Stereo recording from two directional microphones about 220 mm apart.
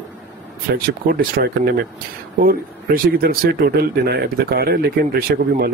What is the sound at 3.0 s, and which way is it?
Speech, 40° right (ahead or behind).